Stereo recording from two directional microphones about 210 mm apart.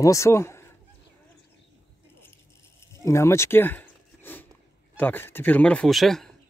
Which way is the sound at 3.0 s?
15° left (ahead or behind).